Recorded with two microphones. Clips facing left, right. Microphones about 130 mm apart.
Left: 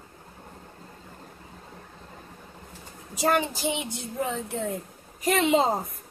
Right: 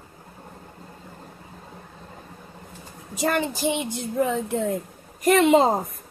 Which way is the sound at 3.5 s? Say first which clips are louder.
Right 4 dB; 55° right (ahead or behind).